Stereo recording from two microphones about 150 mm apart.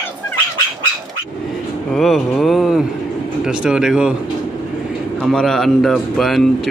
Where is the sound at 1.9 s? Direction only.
Centre (ahead or behind).